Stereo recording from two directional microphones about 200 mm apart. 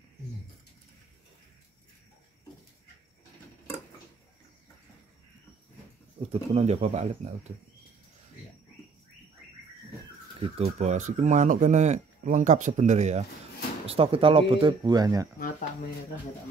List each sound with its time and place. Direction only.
6.3 s speech: 30° right (ahead or behind)
10.4 s speech: 35° right (ahead or behind); by 15.2 s 20° right (ahead or behind)